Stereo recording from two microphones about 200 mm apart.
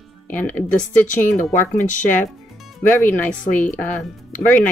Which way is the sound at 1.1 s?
40° left (ahead or behind).